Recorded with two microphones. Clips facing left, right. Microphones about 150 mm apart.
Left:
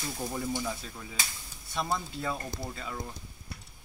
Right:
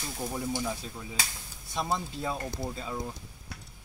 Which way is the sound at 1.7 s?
20° right (ahead or behind).